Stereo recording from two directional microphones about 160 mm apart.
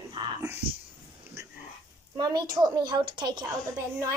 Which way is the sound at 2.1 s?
25° right (ahead or behind).